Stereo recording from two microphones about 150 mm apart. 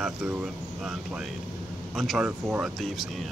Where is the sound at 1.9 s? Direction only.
Centre (ahead or behind).